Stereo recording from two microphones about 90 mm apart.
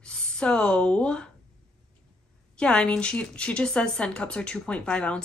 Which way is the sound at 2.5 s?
10° left (ahead or behind).